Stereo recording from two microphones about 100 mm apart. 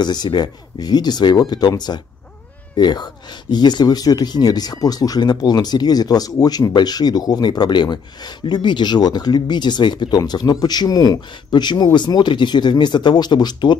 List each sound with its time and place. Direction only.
0.0 s speech: 45° left (ahead or behind)